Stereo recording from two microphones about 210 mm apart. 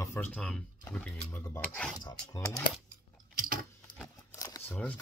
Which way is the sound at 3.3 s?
40° right (ahead or behind).